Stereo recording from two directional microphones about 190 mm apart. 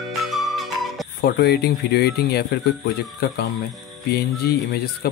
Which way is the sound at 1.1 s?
55° left (ahead or behind).